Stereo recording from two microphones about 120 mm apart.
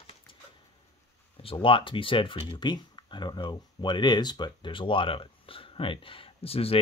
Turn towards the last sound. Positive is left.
turn(degrees=55)  # may be behind; listen again after turning